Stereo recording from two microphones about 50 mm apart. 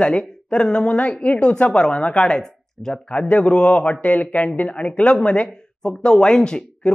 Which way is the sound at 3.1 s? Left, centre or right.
Left.